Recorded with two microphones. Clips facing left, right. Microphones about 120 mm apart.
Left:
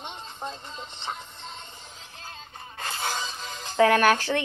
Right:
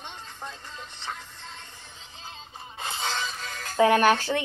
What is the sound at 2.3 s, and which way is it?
Music, centre (ahead or behind).